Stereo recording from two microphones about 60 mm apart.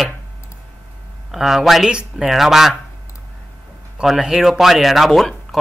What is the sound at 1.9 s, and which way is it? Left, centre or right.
Speech, centre.